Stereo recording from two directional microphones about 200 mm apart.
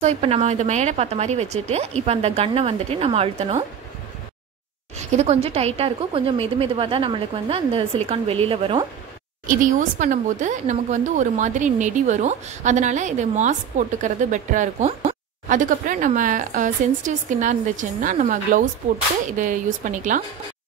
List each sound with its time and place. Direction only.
0.0 s speech: 30° right (ahead or behind)
4.9 s a woman's voice: 35° right (ahead or behind)
9.5 s speech: 40° right (ahead or behind)